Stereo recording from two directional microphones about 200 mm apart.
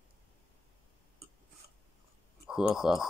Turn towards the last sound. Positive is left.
turn(degrees=0)  # may be behind; listen again after turning